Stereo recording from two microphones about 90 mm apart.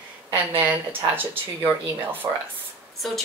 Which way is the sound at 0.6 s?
15° right (ahead or behind).